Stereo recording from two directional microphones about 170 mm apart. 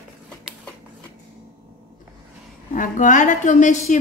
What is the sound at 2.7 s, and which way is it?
Speech, 50° left (ahead or behind).